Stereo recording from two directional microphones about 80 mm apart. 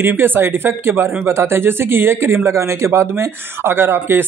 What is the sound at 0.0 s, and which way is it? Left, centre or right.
Speech, right.